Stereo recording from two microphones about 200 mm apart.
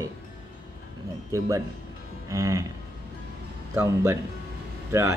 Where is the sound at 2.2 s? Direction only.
15° right (ahead or behind).